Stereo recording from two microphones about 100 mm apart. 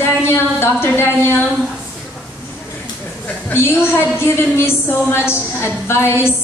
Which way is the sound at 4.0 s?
25° left (ahead or behind).